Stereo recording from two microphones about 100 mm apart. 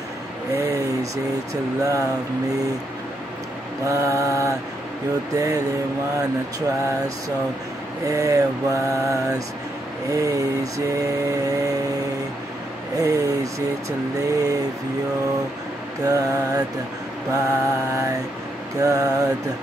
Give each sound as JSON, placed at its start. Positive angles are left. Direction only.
{"t": 0.5, "sound": "a sound", "side_deg": -35}
{"t": 1.5, "sound": "vehicle", "side_deg": -35}
{"t": 3.8, "sound": "vehicle", "side_deg": -30}
{"t": 8.1, "sound": "vehicle", "side_deg": -35}
{"t": 12.9, "sound": "vehicle", "side_deg": -35}
{"t": 16.0, "sound": "vehicle", "side_deg": -35}